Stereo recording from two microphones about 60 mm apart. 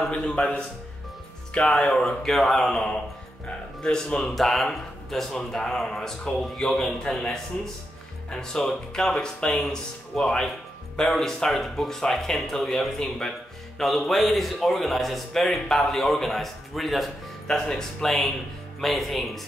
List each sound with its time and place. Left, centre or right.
0.0 s speech: centre